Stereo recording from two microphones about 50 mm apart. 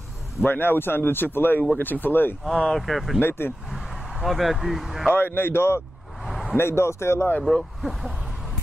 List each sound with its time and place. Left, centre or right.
0.5 s speech: left
2.4 s speech: centre
3.2 s speech: left
3.7 s speech: centre
5.1 s speech: left
6.2 s a sound: centre
6.5 s speech: left
7.5 s speech: centre